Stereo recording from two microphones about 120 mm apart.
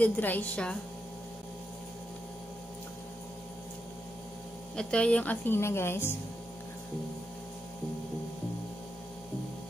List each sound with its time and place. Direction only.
0.0 s a woman's voice: 15° left (ahead or behind)
4.7 s a woman's voice: 10° left (ahead or behind)